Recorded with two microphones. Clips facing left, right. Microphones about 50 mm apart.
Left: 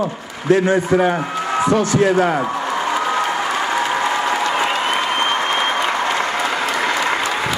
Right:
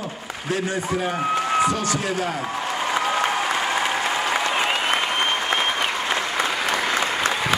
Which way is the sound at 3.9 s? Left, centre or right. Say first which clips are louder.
Left 4 dB; left.